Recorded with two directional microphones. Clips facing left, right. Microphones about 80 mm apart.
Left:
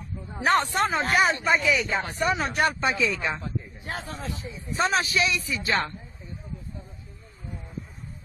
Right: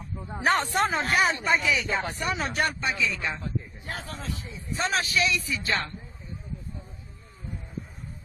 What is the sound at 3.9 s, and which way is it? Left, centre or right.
Speech, left.